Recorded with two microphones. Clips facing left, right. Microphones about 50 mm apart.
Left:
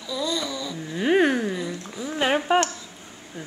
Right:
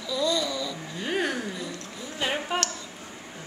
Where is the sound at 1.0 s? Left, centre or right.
Left.